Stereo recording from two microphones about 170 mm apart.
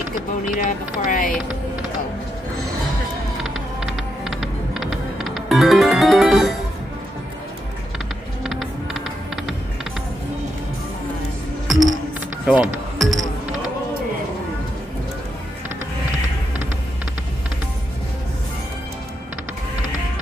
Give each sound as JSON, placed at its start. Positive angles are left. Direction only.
{"t": 0.6, "sound": "speech", "side_deg": 55}
{"t": 3.8, "sound": "music", "side_deg": 0}
{"t": 8.5, "sound": "typing", "side_deg": 0}
{"t": 11.6, "sound": "music", "side_deg": 0}